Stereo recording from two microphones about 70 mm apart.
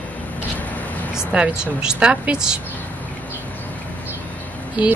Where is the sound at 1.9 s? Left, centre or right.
Centre.